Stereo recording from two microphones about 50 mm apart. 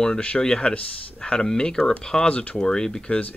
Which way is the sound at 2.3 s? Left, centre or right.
Left.